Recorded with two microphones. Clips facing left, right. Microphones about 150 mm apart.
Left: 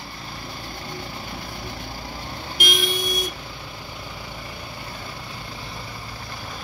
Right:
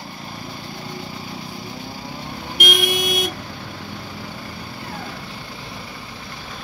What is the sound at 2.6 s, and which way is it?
Vehicle, 75° right (ahead or behind).